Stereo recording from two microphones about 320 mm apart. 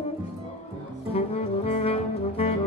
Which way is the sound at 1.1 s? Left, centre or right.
Centre.